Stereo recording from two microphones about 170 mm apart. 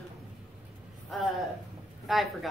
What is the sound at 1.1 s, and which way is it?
A woman's voice, centre (ahead or behind).